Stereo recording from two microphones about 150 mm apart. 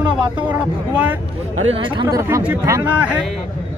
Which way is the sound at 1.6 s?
35° right (ahead or behind).